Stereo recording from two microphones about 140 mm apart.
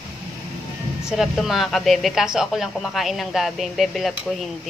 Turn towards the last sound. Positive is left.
turn(degrees=0)  # may be behind; listen again after turning